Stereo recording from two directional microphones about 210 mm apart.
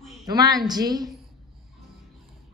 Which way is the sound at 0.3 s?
20° right (ahead or behind).